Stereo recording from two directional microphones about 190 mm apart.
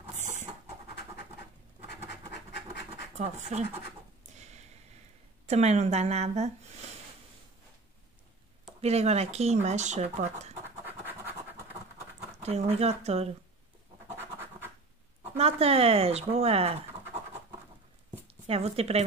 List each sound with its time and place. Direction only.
0.2 s pant: 40° right (ahead or behind)
3.2 s speech: 40° right (ahead or behind)
4.3 s a sound: 35° right (ahead or behind)
5.5 s speech: 35° right (ahead or behind)
8.8 s speech: 35° right (ahead or behind)
10.9 s scratch: 10° right (ahead or behind)
12.4 s speech: 35° right (ahead or behind)
14.1 s scratch: 10° right (ahead or behind)
15.3 s speech: 30° right (ahead or behind)
18.5 s speech: 30° right (ahead or behind)